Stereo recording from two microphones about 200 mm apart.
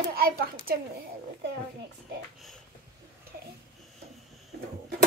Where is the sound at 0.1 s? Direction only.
50° right (ahead or behind).